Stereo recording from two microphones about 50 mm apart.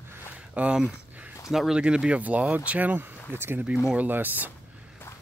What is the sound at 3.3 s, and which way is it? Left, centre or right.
Speech, right.